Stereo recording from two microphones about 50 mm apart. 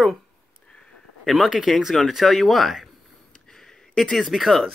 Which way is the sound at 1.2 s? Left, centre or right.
Centre.